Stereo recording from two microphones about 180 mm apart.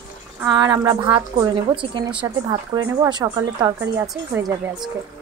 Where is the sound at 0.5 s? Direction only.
25° right (ahead or behind).